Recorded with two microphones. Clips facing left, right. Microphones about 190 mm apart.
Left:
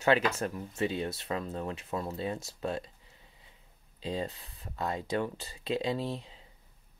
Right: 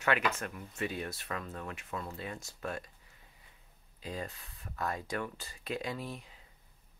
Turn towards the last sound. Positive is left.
turn(degrees=30)  # may be behind; listen again after turning